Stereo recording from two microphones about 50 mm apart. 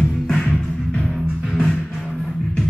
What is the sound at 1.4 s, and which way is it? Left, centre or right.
Music, centre.